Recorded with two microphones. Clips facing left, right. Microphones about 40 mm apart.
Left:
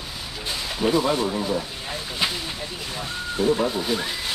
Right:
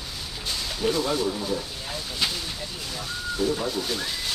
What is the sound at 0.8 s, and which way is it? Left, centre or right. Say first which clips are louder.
Speech: left 4 dB; left.